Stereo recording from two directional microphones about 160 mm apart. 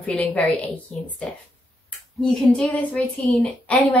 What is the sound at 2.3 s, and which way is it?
Speech, 5° left (ahead or behind).